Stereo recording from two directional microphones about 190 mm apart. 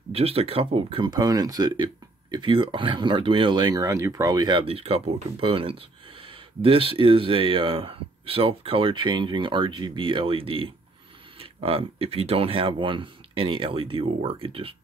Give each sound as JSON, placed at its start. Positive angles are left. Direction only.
{"t": 0.1, "sound": "speech", "side_deg": -30}